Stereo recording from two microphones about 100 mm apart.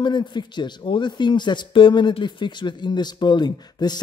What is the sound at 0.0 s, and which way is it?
Speech, 50° left (ahead or behind).